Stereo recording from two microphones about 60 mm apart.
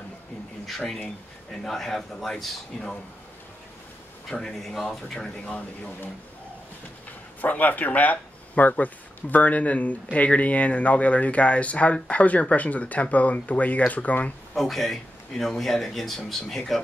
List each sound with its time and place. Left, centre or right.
0.7 s speech: centre
4.3 s speech: centre
5.0 s speech: centre
7.1 s speech: left
14.5 s speech: centre